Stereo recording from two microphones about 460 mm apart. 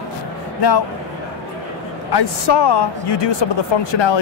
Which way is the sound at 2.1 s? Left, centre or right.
Left.